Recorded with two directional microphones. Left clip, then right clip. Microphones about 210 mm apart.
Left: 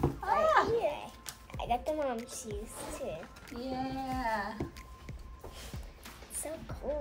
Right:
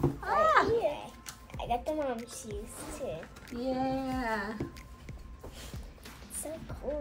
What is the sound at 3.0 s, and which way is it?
Speech, 5° left (ahead or behind).